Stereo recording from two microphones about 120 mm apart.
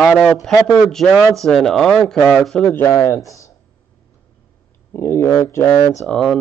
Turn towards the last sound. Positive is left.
turn(degrees=5)  # may be behind; listen again after turning